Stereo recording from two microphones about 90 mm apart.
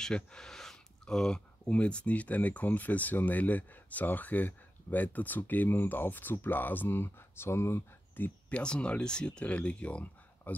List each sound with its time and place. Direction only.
0.0 s speech: 10° left (ahead or behind); by 8.3 s 25° left (ahead or behind)
8.5 s speech: 10° left (ahead or behind)